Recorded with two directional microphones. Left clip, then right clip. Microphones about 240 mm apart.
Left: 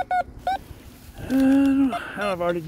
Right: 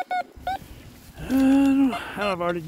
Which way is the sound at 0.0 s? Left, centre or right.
Left.